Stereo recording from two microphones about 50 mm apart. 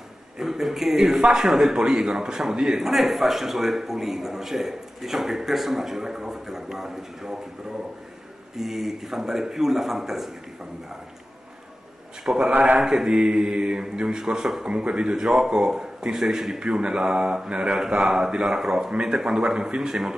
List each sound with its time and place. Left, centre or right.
0.4 s a man's voice: centre
8.5 s a man's voice: centre
12.4 s a man's voice: right
12.8 s a man's voice: centre